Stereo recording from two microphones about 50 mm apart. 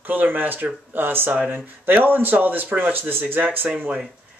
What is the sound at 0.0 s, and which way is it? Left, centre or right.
Speech, right.